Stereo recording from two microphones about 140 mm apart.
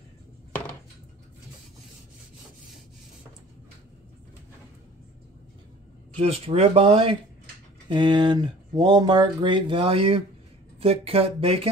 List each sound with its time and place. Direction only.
6.1 s speech: 45° right (ahead or behind)